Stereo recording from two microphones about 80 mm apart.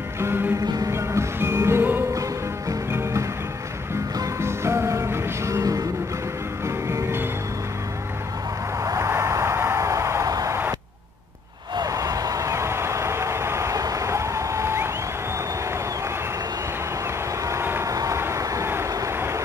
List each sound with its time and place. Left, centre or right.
0.2 s music: right
4.4 s music: right
6.9 s music: right
8.8 s a sound: right
11.7 s a sound: right
17.5 s vehicle: right
17.9 s vehicle: right